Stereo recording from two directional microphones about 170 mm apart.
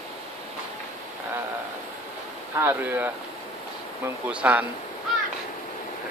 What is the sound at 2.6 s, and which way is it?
Speech, 10° right (ahead or behind).